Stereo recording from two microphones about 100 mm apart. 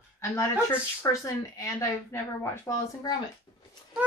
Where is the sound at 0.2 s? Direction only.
30° left (ahead or behind).